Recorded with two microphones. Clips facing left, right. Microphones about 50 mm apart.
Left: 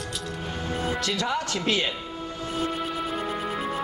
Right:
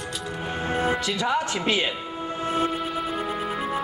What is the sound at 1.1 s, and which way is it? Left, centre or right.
Speech, centre.